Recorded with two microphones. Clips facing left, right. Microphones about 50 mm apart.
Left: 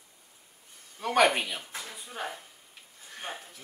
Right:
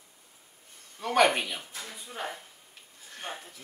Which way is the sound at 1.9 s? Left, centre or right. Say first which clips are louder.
Right 1 dB; centre.